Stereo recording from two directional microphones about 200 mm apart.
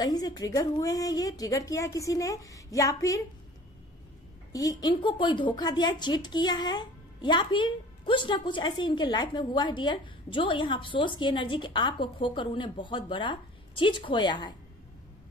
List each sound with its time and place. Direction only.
0.0 s a woman's voice: 20° left (ahead or behind)
4.5 s a woman's voice: 15° left (ahead or behind)